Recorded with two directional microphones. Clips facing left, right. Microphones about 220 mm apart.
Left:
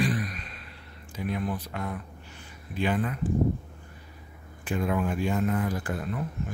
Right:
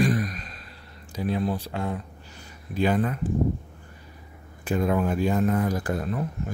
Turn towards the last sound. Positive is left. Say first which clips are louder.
# right 4 dB
turn(degrees=-40)  # may be behind; listen again after turning